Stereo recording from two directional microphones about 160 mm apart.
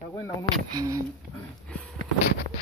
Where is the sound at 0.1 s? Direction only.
20° left (ahead or behind).